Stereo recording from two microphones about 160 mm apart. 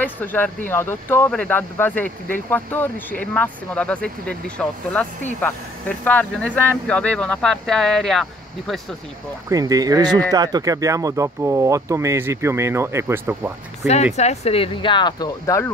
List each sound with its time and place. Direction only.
0.0 s speech: 10° left (ahead or behind)
9.5 s speech: 20° right (ahead or behind)
14.1 s speech: 45° left (ahead or behind); by 15.7 s 20° left (ahead or behind)